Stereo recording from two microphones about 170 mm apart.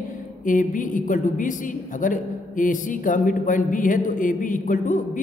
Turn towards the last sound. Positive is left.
turn(degrees=50)  # may be behind; listen again after turning